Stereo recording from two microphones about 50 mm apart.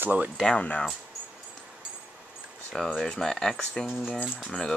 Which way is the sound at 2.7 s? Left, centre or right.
Centre.